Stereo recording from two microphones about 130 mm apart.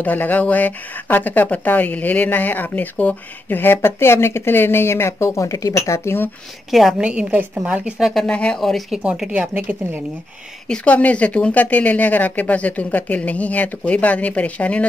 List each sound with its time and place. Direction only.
0.0 s a woman's voice: 15° left (ahead or behind)
6.7 s a woman's voice: centre (ahead or behind)
8.1 s a woman's voice: 5° left (ahead or behind); by 10.0 s 10° right (ahead or behind)
10.7 s a woman's voice: 10° left (ahead or behind)